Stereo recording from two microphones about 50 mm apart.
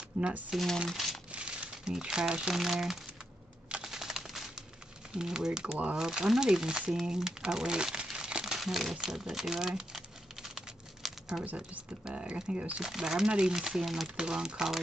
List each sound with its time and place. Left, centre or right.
0.2 s speech: right
0.5 s speech: centre
0.9 s crumpling: centre
1.3 s crumpling: right
2.5 s speech: centre
3.8 s typing: centre
5.1 s speech: centre
8.5 s typing: centre
11.4 s speech: right
12.8 s speech: centre
14.0 s speech: centre